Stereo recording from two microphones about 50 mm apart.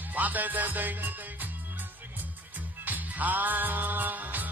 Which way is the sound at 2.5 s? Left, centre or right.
Right.